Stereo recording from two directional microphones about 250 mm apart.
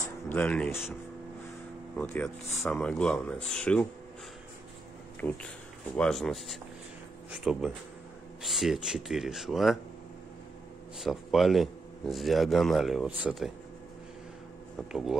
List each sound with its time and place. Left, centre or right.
0.3 s a man's voice: centre
2.0 s a man's voice: centre
5.2 s a man's voice: centre
11.0 s a man's voice: centre
14.9 s a man's voice: centre